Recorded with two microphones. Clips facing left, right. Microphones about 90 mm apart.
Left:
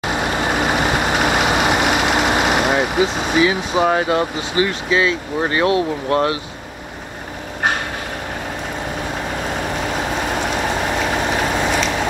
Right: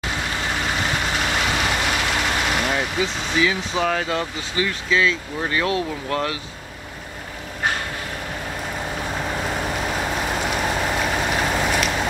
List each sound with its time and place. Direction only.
0.0 s vehicle: 20° left (ahead or behind)
5.4 s speech: 30° left (ahead or behind)
9.9 s vehicle: 20° left (ahead or behind)
11.1 s boat: 30° left (ahead or behind)
11.3 s vehicle: 15° left (ahead or behind)